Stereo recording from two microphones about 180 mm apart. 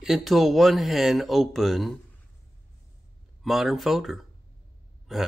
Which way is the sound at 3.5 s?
Centre (ahead or behind).